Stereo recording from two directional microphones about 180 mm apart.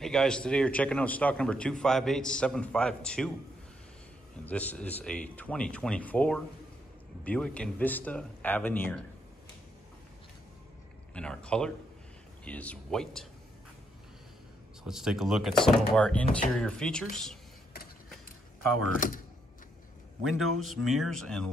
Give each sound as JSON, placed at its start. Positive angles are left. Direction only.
{"t": 0.0, "sound": "a man's voice", "side_deg": 5}
{"t": 4.5, "sound": "speech", "side_deg": 10}
{"t": 11.1, "sound": "a man's voice", "side_deg": 5}
{"t": 14.9, "sound": "a man's voice", "side_deg": 0}
{"t": 18.9, "sound": "speech", "side_deg": 50}
{"t": 20.2, "sound": "a man's voice", "side_deg": 0}